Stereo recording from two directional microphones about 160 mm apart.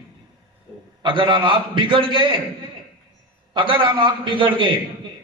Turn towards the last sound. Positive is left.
turn(degrees=-30)  # may be behind; listen again after turning